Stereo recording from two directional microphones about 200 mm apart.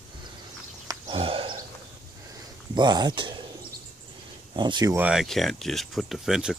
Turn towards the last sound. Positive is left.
turn(degrees=-5)  # may be behind; listen again after turning